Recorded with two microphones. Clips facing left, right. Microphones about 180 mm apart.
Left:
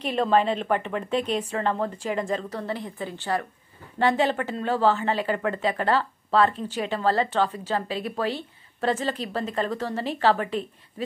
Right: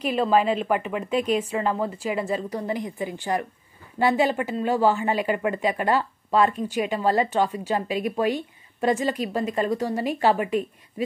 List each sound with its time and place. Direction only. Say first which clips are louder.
0.0 s speech: right 1 dB; 5° right (ahead or behind)